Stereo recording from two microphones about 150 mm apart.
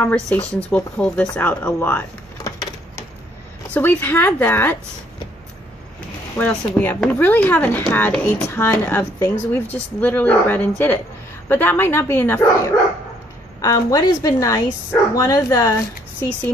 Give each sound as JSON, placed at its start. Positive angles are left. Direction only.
{"t": 0.0, "sound": "speech", "side_deg": 10}
{"t": 3.7, "sound": "speech", "side_deg": 10}
{"t": 6.3, "sound": "speech", "side_deg": 10}